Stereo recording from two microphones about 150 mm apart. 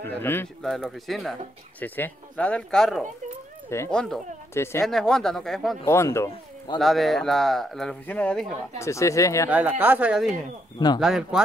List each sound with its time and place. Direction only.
0.0 s speech: 15° left (ahead or behind)
0.6 s speech: centre (ahead or behind)
1.8 s speech: 10° left (ahead or behind)
5.9 s speech: 20° left (ahead or behind)
6.8 s speech: centre (ahead or behind)
8.7 s speech: 20° left (ahead or behind)
9.5 s speech: 10° right (ahead or behind)